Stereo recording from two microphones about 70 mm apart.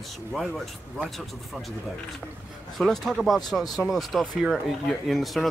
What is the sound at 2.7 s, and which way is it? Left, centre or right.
Speech, centre.